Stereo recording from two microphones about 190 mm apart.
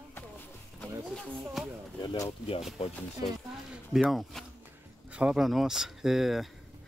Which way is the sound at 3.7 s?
5° right (ahead or behind).